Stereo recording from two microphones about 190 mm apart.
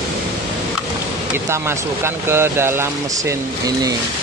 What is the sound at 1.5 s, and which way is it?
Speech, 15° right (ahead or behind).